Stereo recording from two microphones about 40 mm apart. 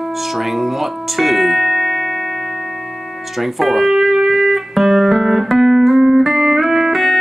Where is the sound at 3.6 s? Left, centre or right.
Centre.